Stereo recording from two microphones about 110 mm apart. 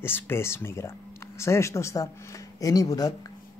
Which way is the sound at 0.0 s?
20° left (ahead or behind).